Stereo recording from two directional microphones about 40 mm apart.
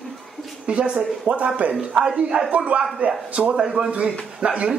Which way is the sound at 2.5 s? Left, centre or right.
Right.